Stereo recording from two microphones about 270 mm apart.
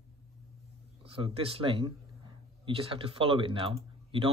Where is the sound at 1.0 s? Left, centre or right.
Centre.